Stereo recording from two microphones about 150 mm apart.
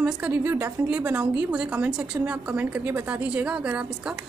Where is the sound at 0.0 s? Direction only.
10° right (ahead or behind).